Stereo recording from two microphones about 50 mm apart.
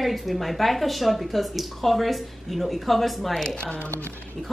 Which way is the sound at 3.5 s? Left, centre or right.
Left.